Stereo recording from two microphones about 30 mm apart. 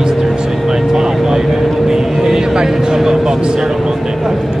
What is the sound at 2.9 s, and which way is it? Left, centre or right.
Music, centre.